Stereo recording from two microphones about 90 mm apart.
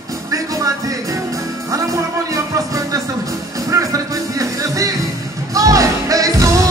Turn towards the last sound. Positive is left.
turn(degrees=-40)  # may be behind; listen again after turning